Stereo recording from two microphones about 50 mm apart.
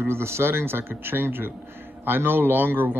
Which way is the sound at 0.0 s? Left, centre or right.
Right.